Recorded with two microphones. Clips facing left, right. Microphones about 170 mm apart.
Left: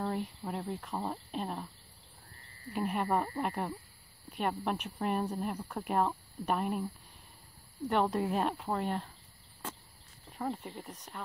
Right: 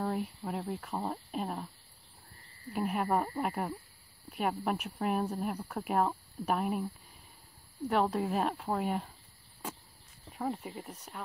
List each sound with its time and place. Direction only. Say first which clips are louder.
0.0 s speech: right 1 dB; 5° right (ahead or behind)
2.7 s speech: right 1 dB; 5° right (ahead or behind)
7.9 s speech: even; centre (ahead or behind)
10.3 s speech: right 1 dB; 5° right (ahead or behind)